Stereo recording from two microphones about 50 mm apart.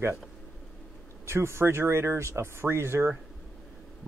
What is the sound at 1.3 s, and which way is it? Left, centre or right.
Speech, right.